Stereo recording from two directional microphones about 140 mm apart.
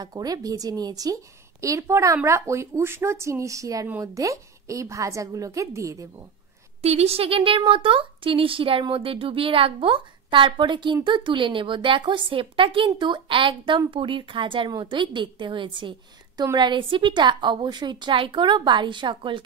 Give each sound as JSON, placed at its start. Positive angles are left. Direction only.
{"t": 0.0, "sound": "a woman's voice", "side_deg": -25}
{"t": 6.8, "sound": "a woman's voice", "side_deg": -50}